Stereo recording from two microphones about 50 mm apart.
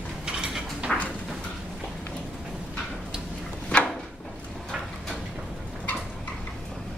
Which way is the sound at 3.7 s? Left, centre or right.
Centre.